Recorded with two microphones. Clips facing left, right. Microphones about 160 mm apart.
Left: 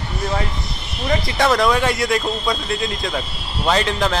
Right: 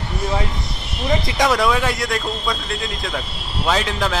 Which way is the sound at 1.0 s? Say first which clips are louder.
Even; 15° right (ahead or behind).